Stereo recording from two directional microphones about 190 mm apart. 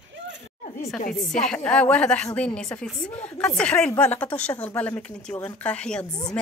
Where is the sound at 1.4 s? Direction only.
5° left (ahead or behind).